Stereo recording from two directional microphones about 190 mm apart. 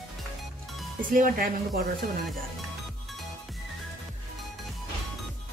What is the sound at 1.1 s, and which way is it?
Speech, 50° right (ahead or behind).